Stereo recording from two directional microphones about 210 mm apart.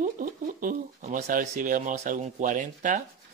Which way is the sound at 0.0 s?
40° right (ahead or behind).